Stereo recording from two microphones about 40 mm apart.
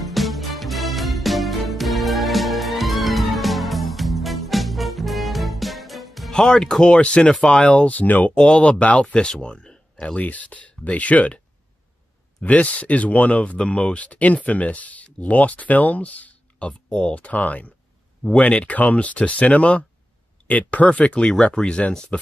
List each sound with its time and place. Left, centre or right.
0.0 s music: centre
6.3 s speech: centre
7.9 s speech: left
8.4 s speech: left
12.4 s speech: left
16.5 s speech: left
21.3 s speech: centre